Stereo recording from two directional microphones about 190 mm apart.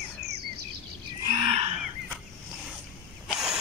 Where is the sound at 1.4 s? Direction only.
30° right (ahead or behind).